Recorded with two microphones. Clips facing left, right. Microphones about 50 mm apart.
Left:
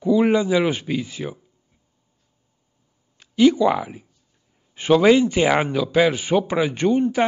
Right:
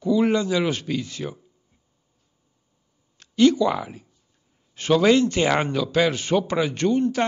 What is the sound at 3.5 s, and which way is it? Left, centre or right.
Speech, centre.